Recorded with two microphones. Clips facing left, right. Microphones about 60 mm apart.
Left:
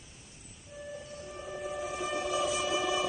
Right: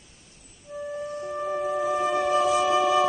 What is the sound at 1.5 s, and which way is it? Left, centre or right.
Music, right.